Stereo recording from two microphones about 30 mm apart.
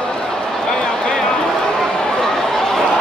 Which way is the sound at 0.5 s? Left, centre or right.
Centre.